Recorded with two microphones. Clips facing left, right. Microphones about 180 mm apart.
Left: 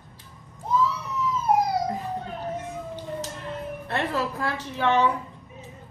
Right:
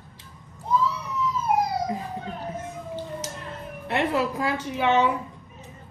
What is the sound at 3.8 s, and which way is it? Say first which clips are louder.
A woman's voice: right 4 dB; 15° right (ahead or behind).